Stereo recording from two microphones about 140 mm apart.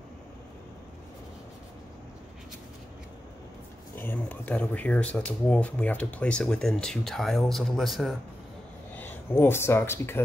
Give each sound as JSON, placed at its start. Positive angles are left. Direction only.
{"t": 3.9, "sound": "speech", "side_deg": 15}
{"t": 8.9, "sound": "speech", "side_deg": 15}